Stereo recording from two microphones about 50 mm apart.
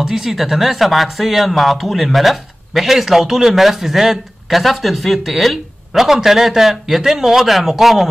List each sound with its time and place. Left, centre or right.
0.0 s speech: centre